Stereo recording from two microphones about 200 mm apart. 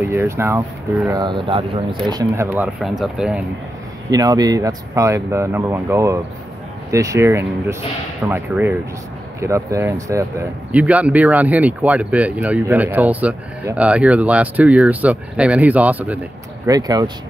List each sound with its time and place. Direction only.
0.0 s speech: 10° right (ahead or behind)
1.2 s speech: 25° right (ahead or behind); by 3.4 s 5° right (ahead or behind)
4.1 s speech: 20° right (ahead or behind)
16.6 s speech: 20° right (ahead or behind)